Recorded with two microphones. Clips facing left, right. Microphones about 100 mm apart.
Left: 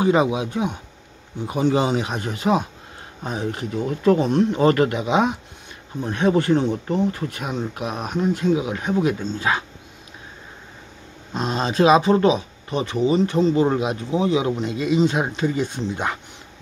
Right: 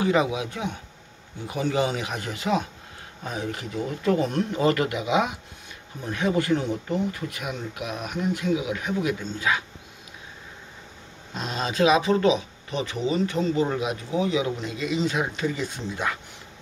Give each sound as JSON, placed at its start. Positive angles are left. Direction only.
{"t": 0.0, "sound": "speech", "side_deg": 25}
{"t": 4.2, "sound": "speech", "side_deg": 25}
{"t": 4.6, "sound": "speech", "side_deg": 40}
{"t": 11.3, "sound": "speech", "side_deg": 30}